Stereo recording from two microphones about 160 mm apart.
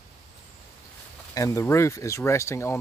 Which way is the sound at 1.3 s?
20° left (ahead or behind).